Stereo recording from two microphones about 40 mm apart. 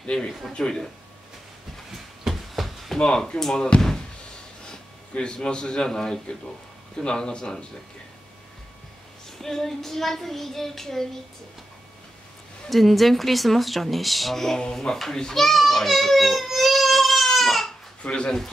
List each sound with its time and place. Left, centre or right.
0.0 s speech: left
2.5 s a sound: centre
3.0 s speech: centre
4.6 s a man's voice: left
9.4 s speech: centre
12.6 s a child's voice: centre
18.0 s speech: left